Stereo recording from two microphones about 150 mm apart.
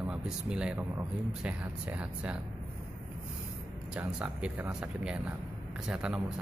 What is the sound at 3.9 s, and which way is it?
Speech, 5° right (ahead or behind).